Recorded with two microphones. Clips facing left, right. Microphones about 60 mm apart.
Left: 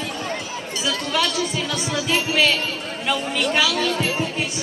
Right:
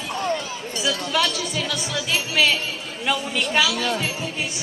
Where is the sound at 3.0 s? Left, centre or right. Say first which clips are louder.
Left 1 dB; centre.